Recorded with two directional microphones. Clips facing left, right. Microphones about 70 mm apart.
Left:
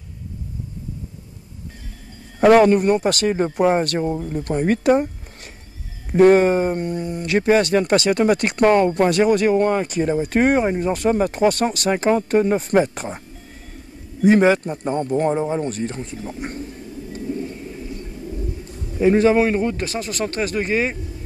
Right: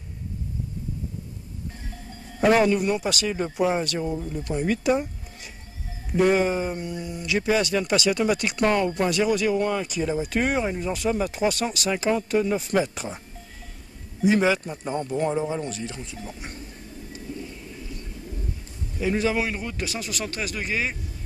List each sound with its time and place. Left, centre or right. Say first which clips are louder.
2.4 s speech: left 7 dB; left
14.2 s a man's voice: left 6 dB; left
17.1 s a sound: left 9 dB; left
18.9 s a man's voice: left 9 dB; left